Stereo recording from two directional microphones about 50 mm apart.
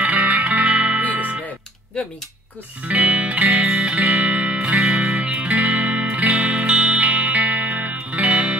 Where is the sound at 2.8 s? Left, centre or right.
Right.